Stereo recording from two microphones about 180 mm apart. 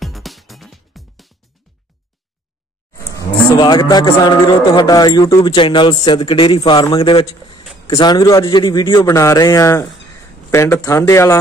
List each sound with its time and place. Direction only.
0.0 s music: centre (ahead or behind)
3.2 s a man's voice: 20° left (ahead or behind)